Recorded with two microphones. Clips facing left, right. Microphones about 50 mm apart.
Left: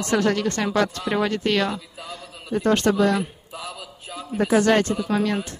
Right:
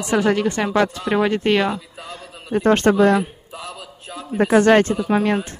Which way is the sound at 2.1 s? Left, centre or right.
Right.